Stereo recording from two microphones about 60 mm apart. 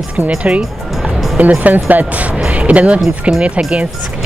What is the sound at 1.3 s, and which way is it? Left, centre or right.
Speech, right.